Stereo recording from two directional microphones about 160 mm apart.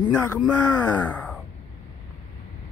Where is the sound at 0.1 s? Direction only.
15° left (ahead or behind).